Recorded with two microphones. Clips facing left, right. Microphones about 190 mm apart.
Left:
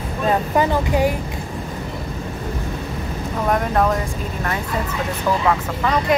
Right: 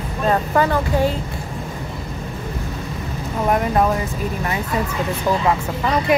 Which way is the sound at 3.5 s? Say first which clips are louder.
Right 1 dB; 10° right (ahead or behind).